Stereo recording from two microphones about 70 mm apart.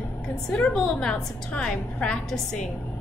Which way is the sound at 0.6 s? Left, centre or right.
Centre.